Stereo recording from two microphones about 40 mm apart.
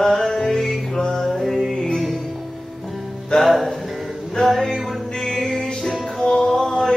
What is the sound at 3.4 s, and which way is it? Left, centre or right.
Music, centre.